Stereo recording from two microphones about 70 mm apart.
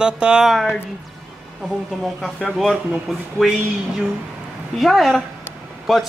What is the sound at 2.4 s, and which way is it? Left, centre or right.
Speech, centre.